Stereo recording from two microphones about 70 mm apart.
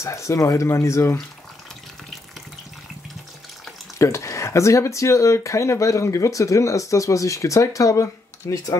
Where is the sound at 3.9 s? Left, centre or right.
Left.